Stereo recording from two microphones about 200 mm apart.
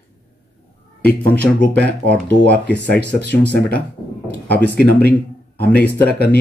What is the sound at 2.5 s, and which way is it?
Speech, 5° left (ahead or behind).